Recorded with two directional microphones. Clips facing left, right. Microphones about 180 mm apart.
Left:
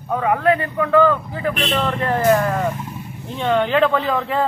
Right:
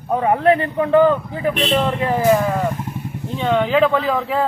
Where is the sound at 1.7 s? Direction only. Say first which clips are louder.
Right 2 dB; 10° right (ahead or behind).